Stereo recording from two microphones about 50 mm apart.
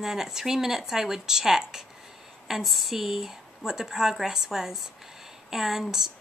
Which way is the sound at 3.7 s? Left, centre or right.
Centre.